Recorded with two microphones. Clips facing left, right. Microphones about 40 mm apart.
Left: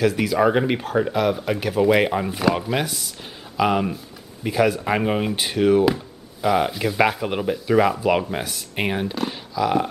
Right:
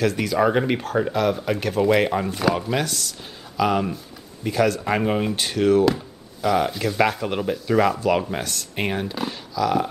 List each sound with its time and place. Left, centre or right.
0.0 s speech: centre
9.6 s speech: centre